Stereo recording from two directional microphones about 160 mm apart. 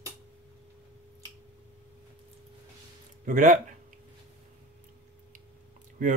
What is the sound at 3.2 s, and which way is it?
Speech, 55° right (ahead or behind).